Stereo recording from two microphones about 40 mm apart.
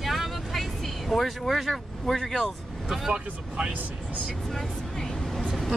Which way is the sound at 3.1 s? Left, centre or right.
Right.